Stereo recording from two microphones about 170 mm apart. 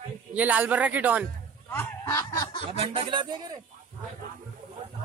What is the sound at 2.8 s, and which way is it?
Speech, 30° right (ahead or behind).